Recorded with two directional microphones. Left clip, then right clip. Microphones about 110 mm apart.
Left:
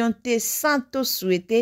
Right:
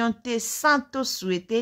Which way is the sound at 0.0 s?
30° left (ahead or behind).